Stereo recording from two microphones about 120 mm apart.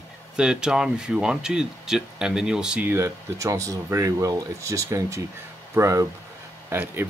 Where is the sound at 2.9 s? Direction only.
20° right (ahead or behind).